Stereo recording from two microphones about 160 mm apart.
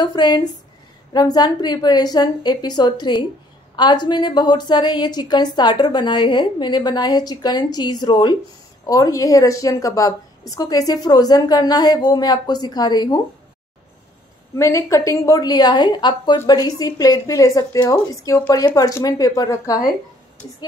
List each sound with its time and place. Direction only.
0.0 s a woman's voice: 25° left (ahead or behind)
14.6 s a woman's voice: 20° left (ahead or behind)